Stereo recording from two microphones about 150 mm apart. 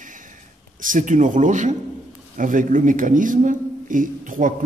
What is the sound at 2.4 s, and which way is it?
A man's voice, 60° right (ahead or behind).